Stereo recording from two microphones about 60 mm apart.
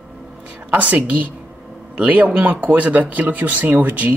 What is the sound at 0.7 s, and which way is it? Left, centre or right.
Speech, right.